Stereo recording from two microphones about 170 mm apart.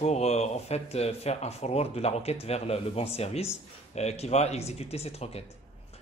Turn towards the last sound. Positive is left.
turn(degrees=35)  # may be behind; listen again after turning